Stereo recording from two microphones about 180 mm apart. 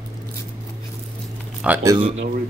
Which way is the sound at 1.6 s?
10° right (ahead or behind).